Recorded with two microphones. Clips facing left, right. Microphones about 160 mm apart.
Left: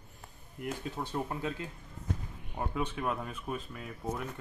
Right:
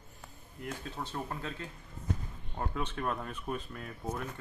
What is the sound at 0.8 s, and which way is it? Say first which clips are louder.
Speech: left 4 dB; 15° left (ahead or behind).